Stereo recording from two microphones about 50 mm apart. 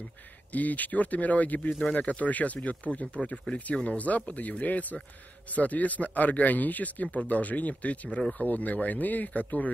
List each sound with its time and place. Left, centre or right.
0.5 s a man's voice: left